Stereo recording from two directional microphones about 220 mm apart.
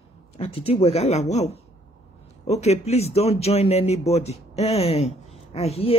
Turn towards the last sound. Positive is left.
turn(degrees=30)  # may be behind; listen again after turning